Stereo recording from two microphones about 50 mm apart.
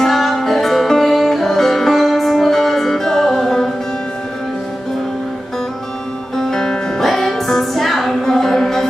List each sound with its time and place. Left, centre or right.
0.0 s music: centre
6.3 s music: centre